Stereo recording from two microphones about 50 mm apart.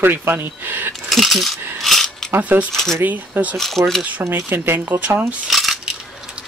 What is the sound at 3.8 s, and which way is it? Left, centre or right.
Speech, right.